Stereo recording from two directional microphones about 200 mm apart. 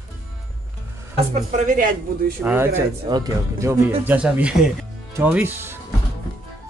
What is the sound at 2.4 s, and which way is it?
Speech, 10° right (ahead or behind).